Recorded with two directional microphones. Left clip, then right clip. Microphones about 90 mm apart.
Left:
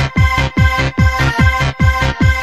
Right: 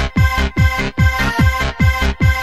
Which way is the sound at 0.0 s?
25° left (ahead or behind).